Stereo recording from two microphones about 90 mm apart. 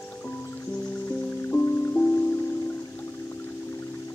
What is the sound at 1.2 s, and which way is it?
Music, 20° left (ahead or behind).